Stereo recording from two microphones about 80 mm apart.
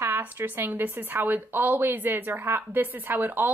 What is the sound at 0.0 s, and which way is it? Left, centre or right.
Speech, right.